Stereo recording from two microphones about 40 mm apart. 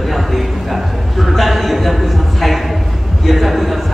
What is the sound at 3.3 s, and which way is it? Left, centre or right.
Speech, centre.